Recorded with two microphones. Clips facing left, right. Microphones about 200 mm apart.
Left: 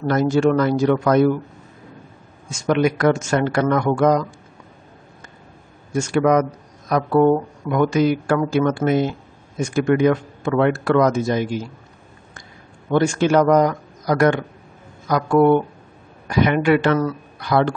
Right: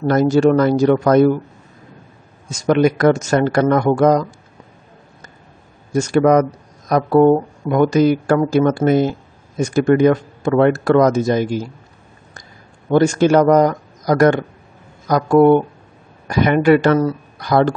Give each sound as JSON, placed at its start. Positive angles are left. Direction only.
{"t": 0.1, "sound": "speech", "side_deg": -40}
{"t": 2.5, "sound": "speech", "side_deg": -40}
{"t": 5.9, "sound": "speech", "side_deg": -40}
{"t": 12.9, "sound": "speech", "side_deg": -40}